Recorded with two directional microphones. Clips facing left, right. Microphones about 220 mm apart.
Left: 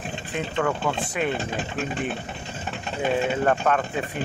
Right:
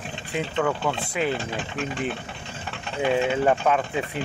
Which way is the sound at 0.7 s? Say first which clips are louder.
Even; 5° right (ahead or behind).